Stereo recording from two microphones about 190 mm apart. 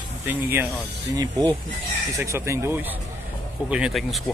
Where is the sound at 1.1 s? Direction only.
20° right (ahead or behind).